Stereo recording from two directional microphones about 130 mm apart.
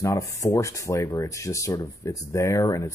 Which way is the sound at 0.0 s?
25° left (ahead or behind).